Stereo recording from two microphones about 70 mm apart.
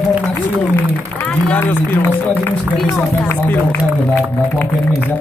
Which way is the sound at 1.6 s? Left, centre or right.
Left.